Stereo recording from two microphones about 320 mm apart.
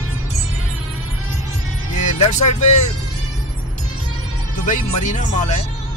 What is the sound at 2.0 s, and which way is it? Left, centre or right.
Speech, left.